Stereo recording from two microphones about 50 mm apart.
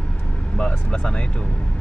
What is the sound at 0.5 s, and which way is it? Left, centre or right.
Speech, centre.